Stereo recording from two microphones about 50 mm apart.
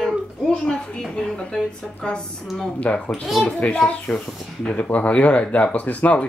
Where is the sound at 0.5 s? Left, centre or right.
Left.